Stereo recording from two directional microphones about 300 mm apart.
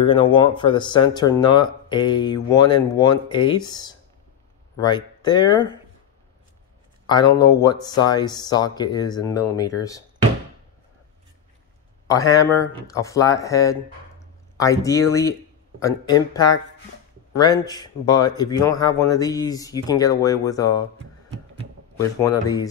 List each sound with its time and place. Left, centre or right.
0.0 s speech: centre
7.1 s speech: centre
12.1 s speech: centre
22.0 s speech: centre